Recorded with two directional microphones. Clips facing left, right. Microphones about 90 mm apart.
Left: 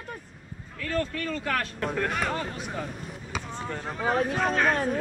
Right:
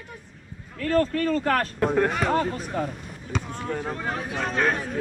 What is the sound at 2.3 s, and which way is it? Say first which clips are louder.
Speech: right 8 dB; 40° right (ahead or behind).